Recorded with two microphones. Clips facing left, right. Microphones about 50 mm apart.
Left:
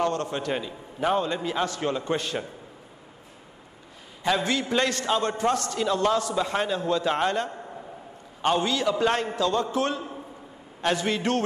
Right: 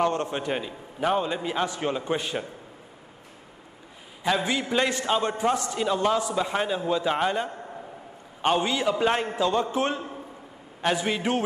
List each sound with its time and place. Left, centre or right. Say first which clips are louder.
0.0 s a man's voice: right 1 dB; right
4.4 s a man's voice: even; centre
10.8 s a man's voice: even; centre